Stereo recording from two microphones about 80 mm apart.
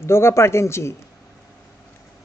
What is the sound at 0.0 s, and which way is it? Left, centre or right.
Speech, left.